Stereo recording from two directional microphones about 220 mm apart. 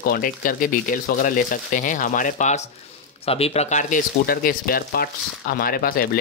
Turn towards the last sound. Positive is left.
turn(degrees=40)  # may be behind; listen again after turning